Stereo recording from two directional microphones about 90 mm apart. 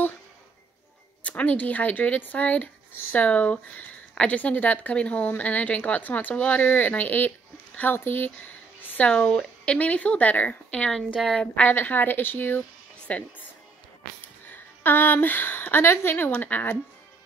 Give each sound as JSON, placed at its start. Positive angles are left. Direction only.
{"t": 1.2, "sound": "speech", "side_deg": 15}
{"t": 11.1, "sound": "a woman's voice", "side_deg": 0}
{"t": 11.5, "sound": "speech", "side_deg": 20}
{"t": 14.5, "sound": "a woman's voice", "side_deg": 20}